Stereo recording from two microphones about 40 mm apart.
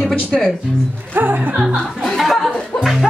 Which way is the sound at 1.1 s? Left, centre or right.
Right.